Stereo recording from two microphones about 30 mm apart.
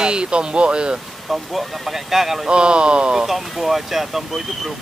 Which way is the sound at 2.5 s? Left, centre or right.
Right.